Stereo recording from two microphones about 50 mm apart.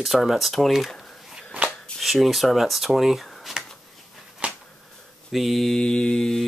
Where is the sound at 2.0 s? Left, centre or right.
Centre.